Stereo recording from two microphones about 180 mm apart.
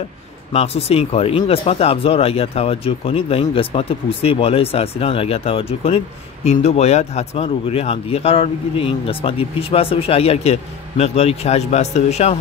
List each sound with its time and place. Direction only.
0.5 s speech: 35° left (ahead or behind)